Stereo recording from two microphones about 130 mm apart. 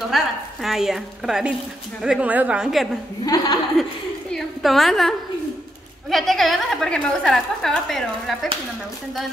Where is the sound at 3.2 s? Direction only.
30° left (ahead or behind).